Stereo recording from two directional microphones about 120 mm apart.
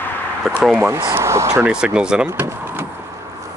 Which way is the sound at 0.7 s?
20° right (ahead or behind).